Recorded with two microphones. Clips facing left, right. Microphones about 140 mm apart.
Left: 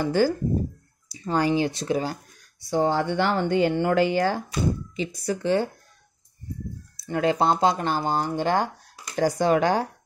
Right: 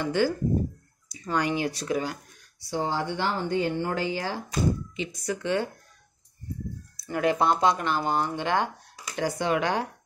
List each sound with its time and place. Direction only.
0.0 s speech: 40° left (ahead or behind)
2.7 s speech: 55° left (ahead or behind)
4.9 s speech: 35° left (ahead or behind)
7.0 s speech: 30° left (ahead or behind)